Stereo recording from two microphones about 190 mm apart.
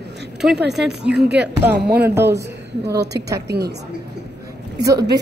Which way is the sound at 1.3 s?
60° right (ahead or behind).